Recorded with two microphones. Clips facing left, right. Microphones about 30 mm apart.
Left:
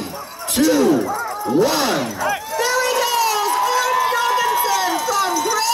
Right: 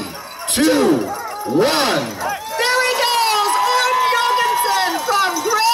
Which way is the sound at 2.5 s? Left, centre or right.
Right.